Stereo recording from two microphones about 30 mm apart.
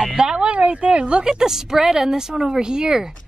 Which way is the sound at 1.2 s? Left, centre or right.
Centre.